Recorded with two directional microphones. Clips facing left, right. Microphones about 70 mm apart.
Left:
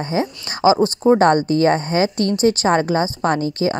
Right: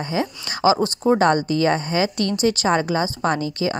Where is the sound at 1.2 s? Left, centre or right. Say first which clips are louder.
Left 3 dB; left.